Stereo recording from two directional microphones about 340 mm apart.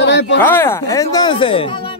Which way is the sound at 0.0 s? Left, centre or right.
Left.